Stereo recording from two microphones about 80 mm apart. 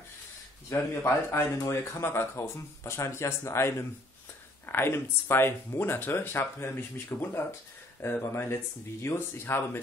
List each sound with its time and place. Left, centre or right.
0.7 s speech: left